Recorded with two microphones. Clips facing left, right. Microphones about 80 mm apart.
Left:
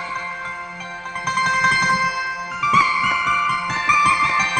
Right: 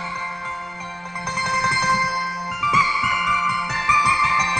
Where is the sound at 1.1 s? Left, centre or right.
Left.